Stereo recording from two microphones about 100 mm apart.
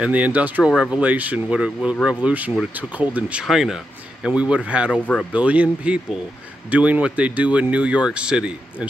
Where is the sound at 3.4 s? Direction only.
5° right (ahead or behind).